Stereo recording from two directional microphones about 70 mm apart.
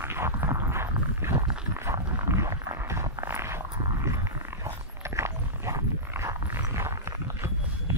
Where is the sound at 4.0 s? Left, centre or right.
Right.